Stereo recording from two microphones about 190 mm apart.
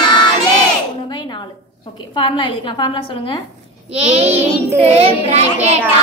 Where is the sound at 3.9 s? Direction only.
35° right (ahead or behind).